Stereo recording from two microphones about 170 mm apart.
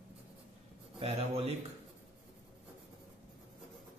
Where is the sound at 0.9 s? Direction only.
35° right (ahead or behind).